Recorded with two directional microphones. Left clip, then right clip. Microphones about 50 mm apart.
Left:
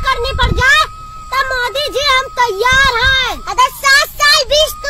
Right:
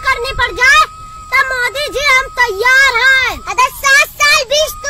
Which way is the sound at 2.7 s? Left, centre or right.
Right.